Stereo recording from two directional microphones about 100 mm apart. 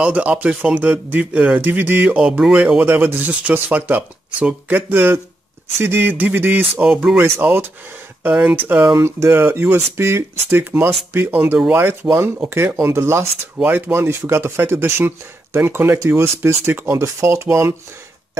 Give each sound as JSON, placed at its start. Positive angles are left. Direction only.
{"t": 0.0, "sound": "speech", "side_deg": -15}
{"t": 7.2, "sound": "speech", "side_deg": -25}